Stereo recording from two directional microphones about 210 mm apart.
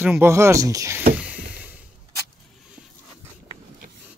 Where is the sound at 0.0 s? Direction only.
10° right (ahead or behind).